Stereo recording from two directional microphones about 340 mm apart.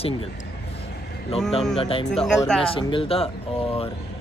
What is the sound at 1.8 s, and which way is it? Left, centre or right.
Speech, centre.